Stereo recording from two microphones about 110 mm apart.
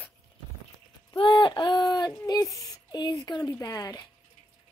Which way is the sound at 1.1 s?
50° left (ahead or behind).